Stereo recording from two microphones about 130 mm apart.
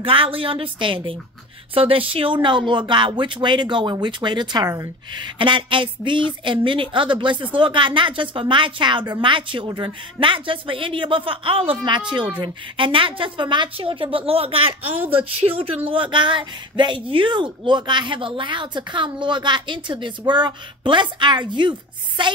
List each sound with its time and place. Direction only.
0.0 s a woman's voice: 45° right (ahead or behind)